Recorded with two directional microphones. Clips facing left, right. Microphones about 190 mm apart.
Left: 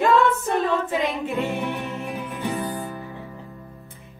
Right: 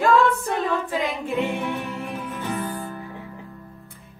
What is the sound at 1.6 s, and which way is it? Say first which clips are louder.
Music: even; 15° left (ahead or behind).